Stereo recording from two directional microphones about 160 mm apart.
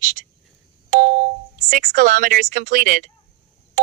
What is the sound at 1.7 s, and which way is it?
Speech, 60° right (ahead or behind).